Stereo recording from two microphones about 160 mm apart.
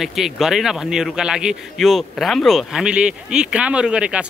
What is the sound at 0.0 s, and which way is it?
Speech, centre (ahead or behind).